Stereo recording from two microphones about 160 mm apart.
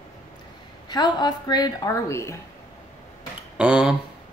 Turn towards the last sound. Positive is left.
turn(degrees=-5)  # may be behind; listen again after turning